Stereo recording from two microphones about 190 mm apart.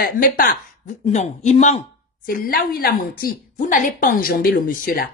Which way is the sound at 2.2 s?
50° left (ahead or behind).